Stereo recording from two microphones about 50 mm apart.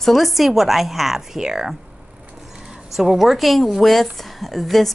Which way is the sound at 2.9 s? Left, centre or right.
Centre.